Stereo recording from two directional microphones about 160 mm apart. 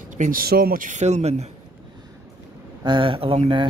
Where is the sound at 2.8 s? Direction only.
30° right (ahead or behind).